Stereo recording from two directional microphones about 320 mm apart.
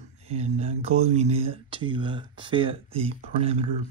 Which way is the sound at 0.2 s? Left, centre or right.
Centre.